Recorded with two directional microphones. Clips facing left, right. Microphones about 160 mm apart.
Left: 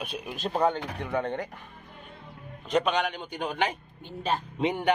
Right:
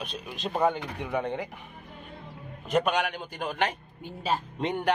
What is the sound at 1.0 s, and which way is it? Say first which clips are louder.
Speech: even; 15° right (ahead or behind).